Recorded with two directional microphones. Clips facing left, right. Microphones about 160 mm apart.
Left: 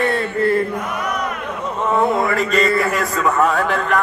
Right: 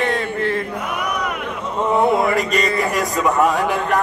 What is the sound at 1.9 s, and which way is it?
A man's voice, 15° right (ahead or behind).